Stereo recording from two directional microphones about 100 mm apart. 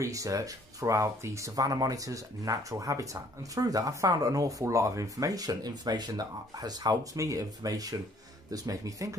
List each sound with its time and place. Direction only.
0.0 s speech: 35° right (ahead or behind)